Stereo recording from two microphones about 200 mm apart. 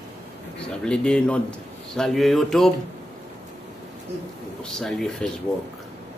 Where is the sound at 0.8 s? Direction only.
5° left (ahead or behind).